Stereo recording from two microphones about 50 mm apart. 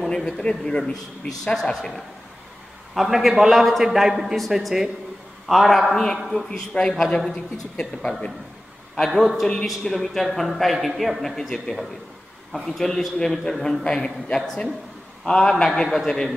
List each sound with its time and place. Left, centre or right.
0.4 s a man's voice: centre
5.9 s speech: centre
6.1 s a man's voice: centre
6.5 s a man's voice: centre
9.2 s a man's voice: centre